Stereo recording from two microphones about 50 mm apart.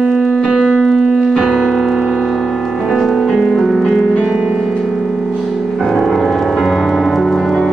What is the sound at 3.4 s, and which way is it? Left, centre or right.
Music, centre.